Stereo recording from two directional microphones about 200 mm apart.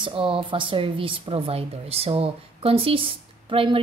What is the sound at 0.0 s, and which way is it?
A woman's voice, 25° right (ahead or behind).